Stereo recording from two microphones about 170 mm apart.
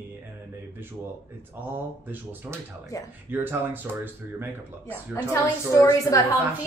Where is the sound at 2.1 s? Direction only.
10° right (ahead or behind).